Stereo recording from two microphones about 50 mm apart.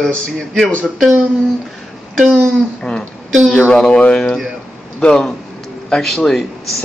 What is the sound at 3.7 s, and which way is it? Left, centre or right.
Speech, centre.